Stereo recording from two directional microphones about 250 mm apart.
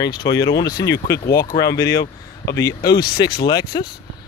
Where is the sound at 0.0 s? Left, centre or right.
Centre.